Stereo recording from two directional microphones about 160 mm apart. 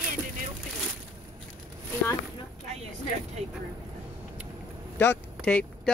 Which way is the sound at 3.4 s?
45° right (ahead or behind).